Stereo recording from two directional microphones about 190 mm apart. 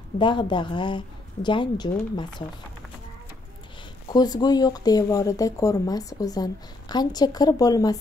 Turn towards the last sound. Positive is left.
turn(degrees=20)  # may be behind; listen again after turning